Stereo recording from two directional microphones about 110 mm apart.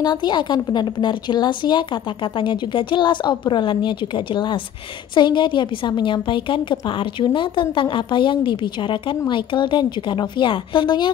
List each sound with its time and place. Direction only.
0.0 s a woman's voice: 40° left (ahead or behind)
5.1 s a woman's voice: 45° left (ahead or behind)